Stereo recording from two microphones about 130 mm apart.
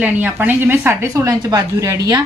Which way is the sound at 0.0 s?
15° right (ahead or behind).